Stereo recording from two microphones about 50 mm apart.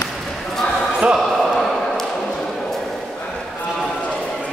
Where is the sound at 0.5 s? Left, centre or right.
Centre.